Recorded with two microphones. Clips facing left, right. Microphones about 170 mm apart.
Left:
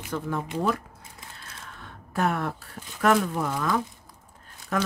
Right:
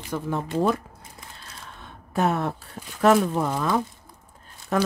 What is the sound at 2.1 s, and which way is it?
Speech, 25° right (ahead or behind).